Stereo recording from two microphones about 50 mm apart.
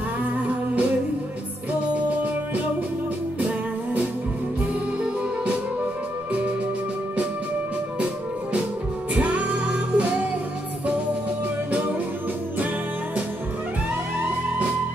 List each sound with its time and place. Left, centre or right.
0.2 s music: right
3.3 s music: right
9.1 s music: right